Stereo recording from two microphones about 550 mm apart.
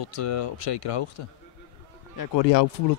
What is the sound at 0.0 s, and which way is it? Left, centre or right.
Speech, left.